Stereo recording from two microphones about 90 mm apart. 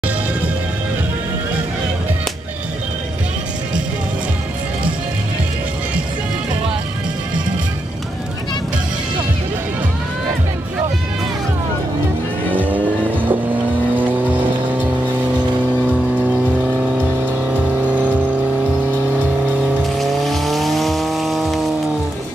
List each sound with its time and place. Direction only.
12.5 s music: 20° right (ahead or behind)
13.9 s vehicle: 20° right (ahead or behind)
15.9 s vehicle: 20° right (ahead or behind)
20.0 s vehicle: centre (ahead or behind)